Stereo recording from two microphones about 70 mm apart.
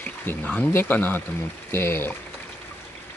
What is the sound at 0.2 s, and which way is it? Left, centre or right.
Speech, left.